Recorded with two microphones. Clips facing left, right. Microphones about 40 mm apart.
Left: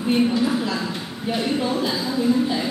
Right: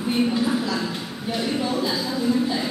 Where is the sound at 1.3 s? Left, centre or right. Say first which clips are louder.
Left 2 dB; centre.